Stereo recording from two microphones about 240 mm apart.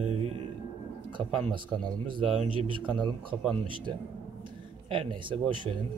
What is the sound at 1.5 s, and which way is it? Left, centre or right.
A man's voice, centre.